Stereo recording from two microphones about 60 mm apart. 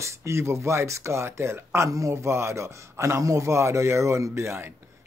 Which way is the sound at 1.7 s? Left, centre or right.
Right.